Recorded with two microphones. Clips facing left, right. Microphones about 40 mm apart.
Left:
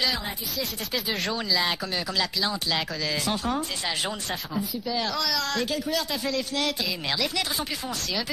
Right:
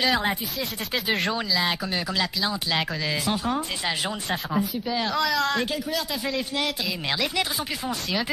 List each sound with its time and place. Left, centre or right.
0.6 s speech: right
1.5 s speech: centre
4.8 s speech: right
5.7 s speech: centre